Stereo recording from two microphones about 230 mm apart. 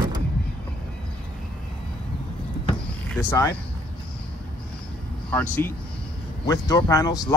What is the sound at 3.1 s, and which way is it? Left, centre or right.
Speech, centre.